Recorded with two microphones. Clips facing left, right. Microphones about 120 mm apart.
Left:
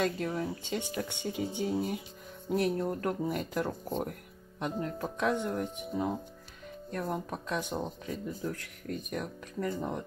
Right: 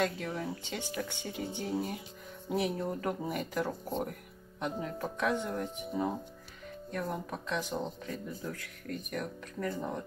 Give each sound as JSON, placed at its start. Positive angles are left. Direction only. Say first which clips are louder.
{"t": 0.0, "sound": "speech", "louder": "left 2 dB", "side_deg": 0}